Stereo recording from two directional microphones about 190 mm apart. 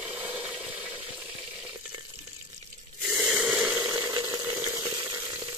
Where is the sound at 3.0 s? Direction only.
5° right (ahead or behind).